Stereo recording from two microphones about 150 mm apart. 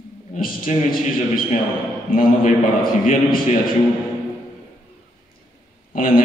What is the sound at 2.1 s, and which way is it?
A man's voice, 65° left (ahead or behind).